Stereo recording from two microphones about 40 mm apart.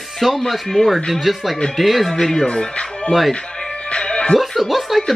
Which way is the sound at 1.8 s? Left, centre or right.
Centre.